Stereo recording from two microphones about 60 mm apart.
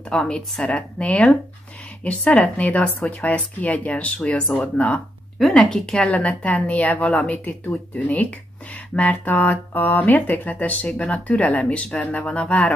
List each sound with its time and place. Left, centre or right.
0.1 s a woman's voice: centre
6.0 s a woman's voice: left